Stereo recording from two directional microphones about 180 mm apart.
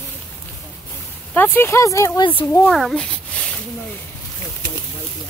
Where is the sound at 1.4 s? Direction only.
10° left (ahead or behind).